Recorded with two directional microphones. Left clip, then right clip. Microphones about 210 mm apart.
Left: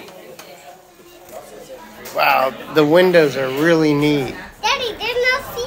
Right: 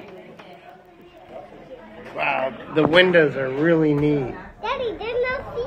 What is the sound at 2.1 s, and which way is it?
Speech, 25° left (ahead or behind).